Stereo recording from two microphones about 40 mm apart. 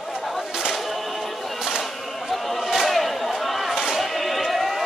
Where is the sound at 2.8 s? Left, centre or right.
Centre.